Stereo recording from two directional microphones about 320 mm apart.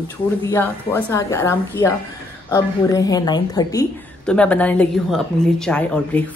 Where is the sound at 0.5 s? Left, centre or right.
Centre.